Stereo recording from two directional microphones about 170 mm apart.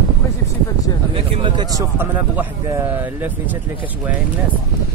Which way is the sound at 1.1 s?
30° right (ahead or behind).